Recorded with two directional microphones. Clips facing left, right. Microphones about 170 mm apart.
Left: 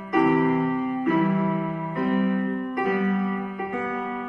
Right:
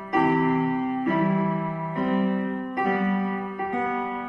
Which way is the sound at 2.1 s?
30° right (ahead or behind).